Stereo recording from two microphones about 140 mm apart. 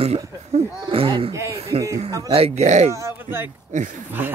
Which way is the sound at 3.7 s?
60° right (ahead or behind).